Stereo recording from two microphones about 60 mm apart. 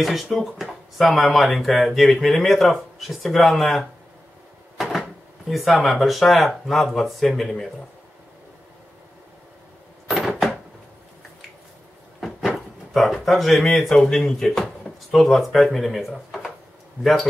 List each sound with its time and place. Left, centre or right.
0.0 s speech: centre
4.7 s cupboard open or close: centre
5.5 s speech: centre
10.0 s a sound: centre
12.2 s speech: centre